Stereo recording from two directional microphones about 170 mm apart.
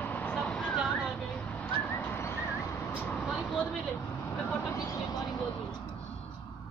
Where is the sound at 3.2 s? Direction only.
Centre (ahead or behind).